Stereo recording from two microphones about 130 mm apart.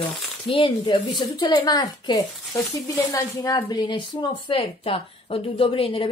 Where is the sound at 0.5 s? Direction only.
45° left (ahead or behind).